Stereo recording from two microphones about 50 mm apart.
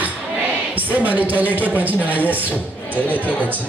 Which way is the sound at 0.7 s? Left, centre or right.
Right.